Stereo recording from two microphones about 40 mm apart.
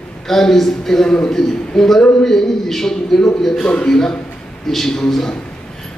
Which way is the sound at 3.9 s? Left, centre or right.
Centre.